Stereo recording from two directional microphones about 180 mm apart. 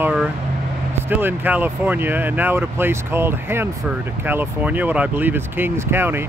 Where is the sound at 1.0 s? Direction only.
10° right (ahead or behind).